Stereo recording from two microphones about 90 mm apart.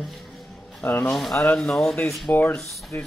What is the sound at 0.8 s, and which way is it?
Speech, 25° left (ahead or behind).